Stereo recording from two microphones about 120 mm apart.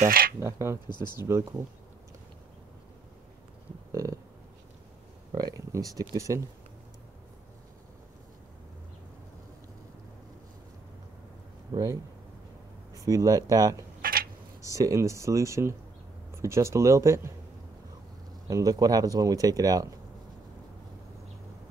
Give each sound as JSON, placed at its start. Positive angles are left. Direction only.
{"t": 0.0, "sound": "speech", "side_deg": -25}
{"t": 0.8, "sound": "speech", "side_deg": 40}
{"t": 1.2, "sound": "speech", "side_deg": -25}
{"t": 5.3, "sound": "speech", "side_deg": -30}
{"t": 11.7, "sound": "speech", "side_deg": -35}
{"t": 12.9, "sound": "speech", "side_deg": -30}
{"t": 18.5, "sound": "speech", "side_deg": -30}